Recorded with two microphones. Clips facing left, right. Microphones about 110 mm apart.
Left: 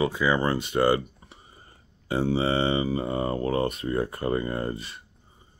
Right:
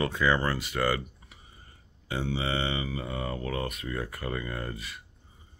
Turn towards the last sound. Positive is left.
turn(degrees=30)  # may be behind; listen again after turning